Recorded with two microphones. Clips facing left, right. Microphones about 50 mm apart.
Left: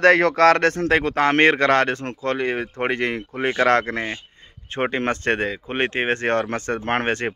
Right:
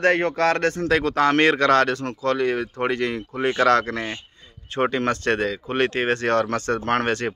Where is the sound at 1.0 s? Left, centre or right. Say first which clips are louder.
Left 1 dB; left.